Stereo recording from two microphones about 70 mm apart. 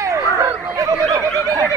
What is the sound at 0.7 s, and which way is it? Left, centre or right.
Snicker, right.